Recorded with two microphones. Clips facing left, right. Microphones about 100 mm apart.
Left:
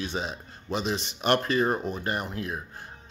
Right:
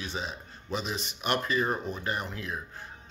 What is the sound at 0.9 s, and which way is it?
Speech, 90° left.